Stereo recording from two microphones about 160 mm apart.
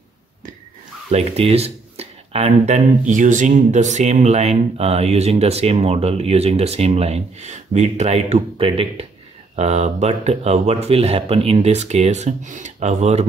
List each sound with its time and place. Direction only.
1.1 s speech: 40° right (ahead or behind)